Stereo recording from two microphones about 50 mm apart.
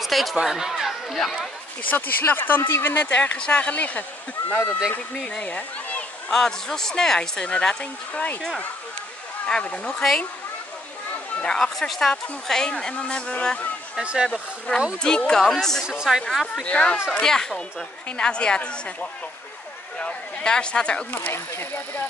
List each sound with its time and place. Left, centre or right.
0.0 s speech: centre
1.9 s speech: left
3.1 s speech: left
6.3 s a woman's voice: centre
7.8 s speech: left
9.5 s speech: left
11.4 s a woman's voice: centre
14.0 s a woman's voice: centre
15.0 s a woman's voice: centre
15.4 s a woman's voice: centre
15.8 s a woman's voice: centre
16.6 s speech: left
17.1 s a woman's voice: centre
18.1 s speech: left